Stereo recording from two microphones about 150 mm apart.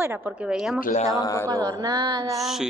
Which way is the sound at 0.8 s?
60° left (ahead or behind).